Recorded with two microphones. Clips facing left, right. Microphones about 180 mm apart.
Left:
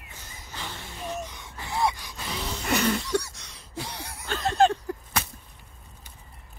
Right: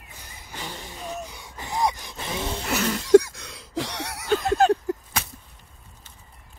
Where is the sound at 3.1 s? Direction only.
90° right.